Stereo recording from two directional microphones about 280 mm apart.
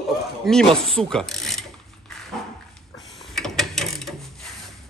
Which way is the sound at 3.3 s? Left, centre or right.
Centre.